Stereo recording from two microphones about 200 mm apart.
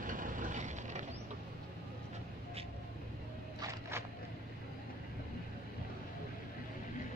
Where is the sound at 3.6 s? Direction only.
15° right (ahead or behind).